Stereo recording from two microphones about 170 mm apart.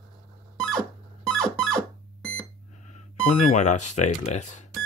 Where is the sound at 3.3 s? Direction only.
45° left (ahead or behind).